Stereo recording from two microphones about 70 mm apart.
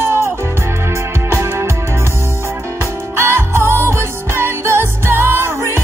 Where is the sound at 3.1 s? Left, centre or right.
Right.